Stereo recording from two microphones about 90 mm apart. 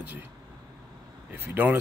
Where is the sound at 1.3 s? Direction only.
20° right (ahead or behind).